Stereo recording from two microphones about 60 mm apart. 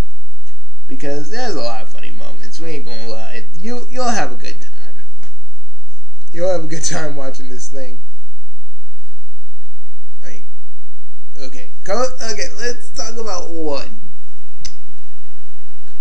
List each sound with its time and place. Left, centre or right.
0.8 s speech: centre
6.3 s a man's voice: centre
10.2 s a sound: centre
11.3 s a man's voice: centre
14.6 s clicking: centre